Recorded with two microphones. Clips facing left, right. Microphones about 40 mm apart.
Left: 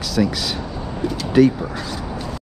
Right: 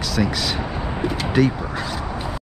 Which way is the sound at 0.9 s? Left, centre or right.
Right.